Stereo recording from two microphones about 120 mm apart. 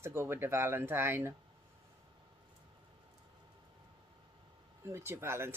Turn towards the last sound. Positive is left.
turn(degrees=-20)  # may be behind; listen again after turning